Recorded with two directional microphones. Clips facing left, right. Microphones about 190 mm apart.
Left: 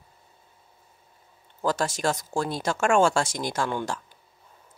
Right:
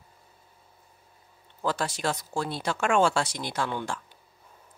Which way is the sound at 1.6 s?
45° left (ahead or behind).